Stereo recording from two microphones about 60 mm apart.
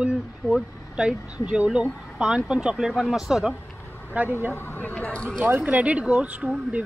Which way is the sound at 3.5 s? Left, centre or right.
Left.